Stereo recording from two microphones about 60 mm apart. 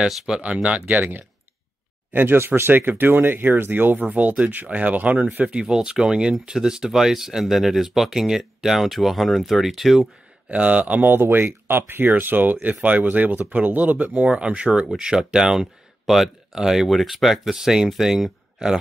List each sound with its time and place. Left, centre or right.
0.4 s speech: centre
2.1 s speech: right
5.6 s speech: centre
10.5 s speech: right